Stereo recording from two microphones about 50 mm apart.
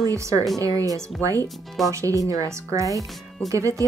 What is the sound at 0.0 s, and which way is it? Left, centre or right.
Speech, right.